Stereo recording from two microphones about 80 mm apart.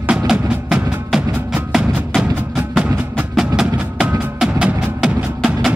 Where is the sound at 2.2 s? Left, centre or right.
Centre.